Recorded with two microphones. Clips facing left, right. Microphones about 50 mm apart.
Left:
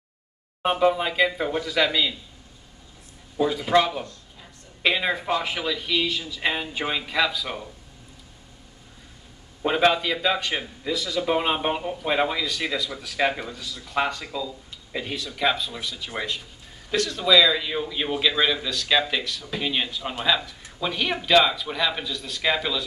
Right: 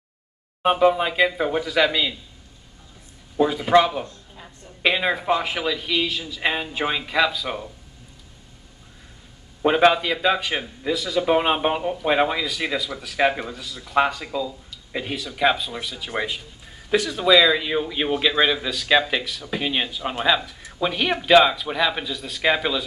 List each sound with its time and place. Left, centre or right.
0.7 s speech: centre
3.3 s speech: centre
9.6 s speech: centre